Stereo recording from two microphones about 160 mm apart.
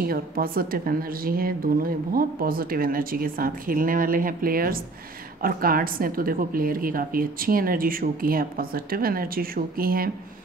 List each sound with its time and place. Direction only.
0.0 s speech: 70° right (ahead or behind)